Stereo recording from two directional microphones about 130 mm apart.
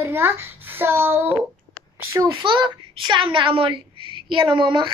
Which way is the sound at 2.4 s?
40° right (ahead or behind).